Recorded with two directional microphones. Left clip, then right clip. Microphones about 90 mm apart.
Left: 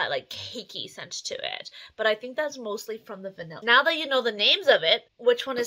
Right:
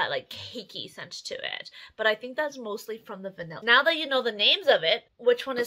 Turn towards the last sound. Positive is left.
turn(degrees=40)  # may be behind; listen again after turning